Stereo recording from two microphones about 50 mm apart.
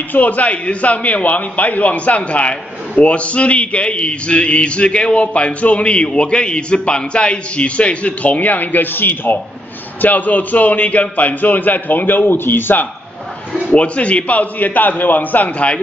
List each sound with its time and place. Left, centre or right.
0.1 s a man's voice: left
13.7 s a man's voice: left